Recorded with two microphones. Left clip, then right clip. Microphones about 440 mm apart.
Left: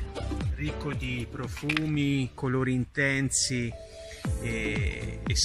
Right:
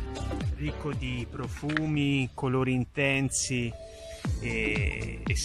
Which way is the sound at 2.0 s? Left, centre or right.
Centre.